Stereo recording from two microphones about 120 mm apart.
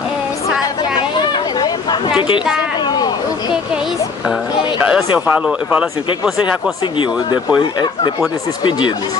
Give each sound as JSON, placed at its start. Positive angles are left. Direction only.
{"t": 5.2, "sound": "speech", "side_deg": -15}
{"t": 7.5, "sound": "speech", "side_deg": 40}